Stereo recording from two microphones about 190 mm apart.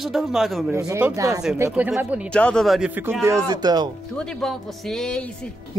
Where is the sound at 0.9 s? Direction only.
15° right (ahead or behind).